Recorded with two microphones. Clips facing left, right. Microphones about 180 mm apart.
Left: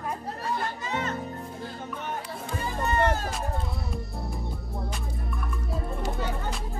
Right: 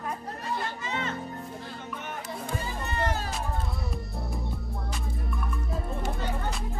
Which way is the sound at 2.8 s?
55° left (ahead or behind).